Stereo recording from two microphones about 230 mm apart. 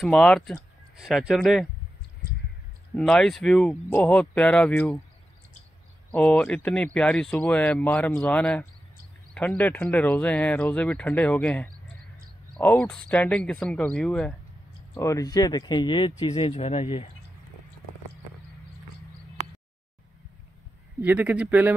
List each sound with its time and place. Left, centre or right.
0.0 s speech: centre
3.0 s speech: centre
6.1 s speech: centre; by 17.1 s left
21.0 s speech: centre